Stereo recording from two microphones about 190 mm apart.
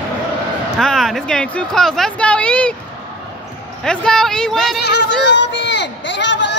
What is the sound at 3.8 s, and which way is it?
Speech, 5° left (ahead or behind).